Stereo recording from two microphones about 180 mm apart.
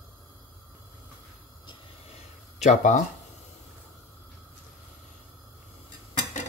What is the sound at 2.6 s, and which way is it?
Speech, 45° left (ahead or behind).